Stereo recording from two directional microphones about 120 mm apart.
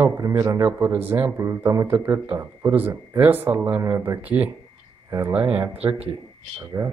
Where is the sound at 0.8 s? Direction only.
15° right (ahead or behind).